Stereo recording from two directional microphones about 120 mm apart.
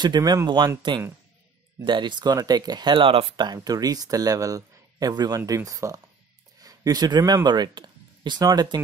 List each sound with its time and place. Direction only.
0.0 s speech: 35° right (ahead or behind)
3.3 s speech: 35° right (ahead or behind)